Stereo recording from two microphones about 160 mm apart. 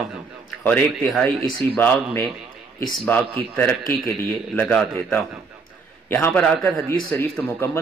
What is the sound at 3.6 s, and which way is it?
Speech, 5° left (ahead or behind).